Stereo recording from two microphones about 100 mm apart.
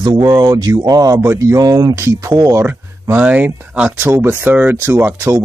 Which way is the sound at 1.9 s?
25° right (ahead or behind).